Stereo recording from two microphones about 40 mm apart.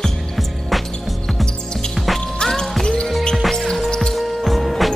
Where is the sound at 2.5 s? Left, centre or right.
Centre.